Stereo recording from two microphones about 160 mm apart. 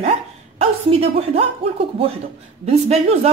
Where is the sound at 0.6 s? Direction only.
35° right (ahead or behind).